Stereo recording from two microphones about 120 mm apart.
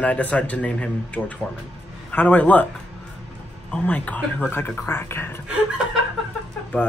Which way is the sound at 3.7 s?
10° left (ahead or behind).